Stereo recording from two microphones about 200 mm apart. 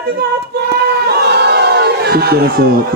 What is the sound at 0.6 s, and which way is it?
Crowd, 55° right (ahead or behind).